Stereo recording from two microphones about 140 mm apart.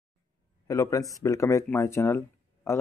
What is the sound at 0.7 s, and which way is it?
Speech, 20° left (ahead or behind).